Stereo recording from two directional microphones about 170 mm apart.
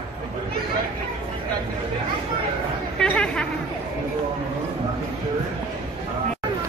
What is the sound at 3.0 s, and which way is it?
Chatter, 5° left (ahead or behind).